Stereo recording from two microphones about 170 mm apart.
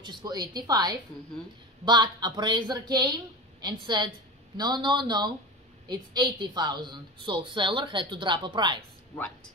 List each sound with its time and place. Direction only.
0.0 s a woman's voice: 25° right (ahead or behind)